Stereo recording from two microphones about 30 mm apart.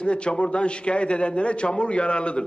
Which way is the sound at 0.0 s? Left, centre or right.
Left.